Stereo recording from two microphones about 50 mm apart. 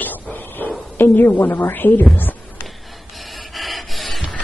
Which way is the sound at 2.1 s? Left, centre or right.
Left.